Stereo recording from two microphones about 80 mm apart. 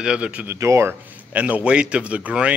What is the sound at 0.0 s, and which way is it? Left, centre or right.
Speech, centre.